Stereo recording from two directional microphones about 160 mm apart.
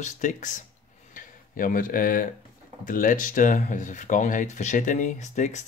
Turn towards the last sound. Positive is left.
turn(degrees=45)  # may be behind; listen again after turning